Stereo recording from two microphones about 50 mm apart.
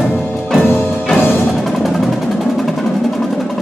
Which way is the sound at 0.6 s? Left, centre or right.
Left.